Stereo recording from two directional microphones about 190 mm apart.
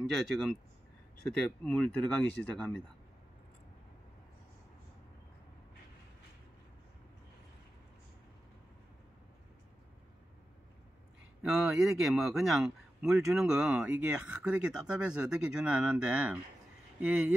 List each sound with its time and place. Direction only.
0.2 s speech: centre (ahead or behind)
11.4 s speech: centre (ahead or behind)